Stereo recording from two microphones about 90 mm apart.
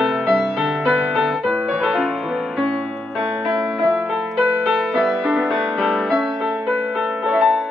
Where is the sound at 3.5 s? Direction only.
5° right (ahead or behind).